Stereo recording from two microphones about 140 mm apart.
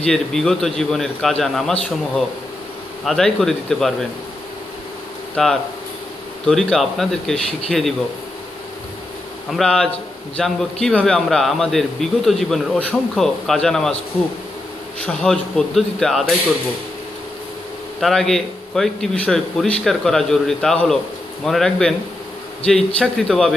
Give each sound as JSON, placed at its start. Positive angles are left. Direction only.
{"t": 0.0, "sound": "a man's voice", "side_deg": 5}
{"t": 5.3, "sound": "a man's voice", "side_deg": 5}
{"t": 9.5, "sound": "a man's voice", "side_deg": 5}
{"t": 15.0, "sound": "a man's voice", "side_deg": 5}
{"t": 18.0, "sound": "a man's voice", "side_deg": 0}
{"t": 22.9, "sound": "a man's voice", "side_deg": 5}